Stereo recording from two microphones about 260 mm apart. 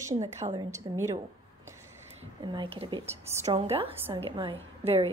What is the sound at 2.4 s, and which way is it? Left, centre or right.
Speech, centre.